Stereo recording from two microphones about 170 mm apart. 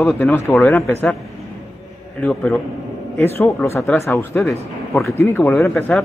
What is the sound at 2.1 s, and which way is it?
A man's voice, 5° left (ahead or behind).